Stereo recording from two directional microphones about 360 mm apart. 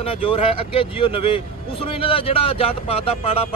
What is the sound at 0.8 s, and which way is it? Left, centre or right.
Speech, centre.